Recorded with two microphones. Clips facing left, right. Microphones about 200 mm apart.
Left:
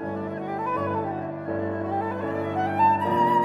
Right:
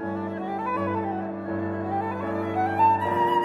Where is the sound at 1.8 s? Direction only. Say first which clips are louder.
Left 1 dB; 20° left (ahead or behind).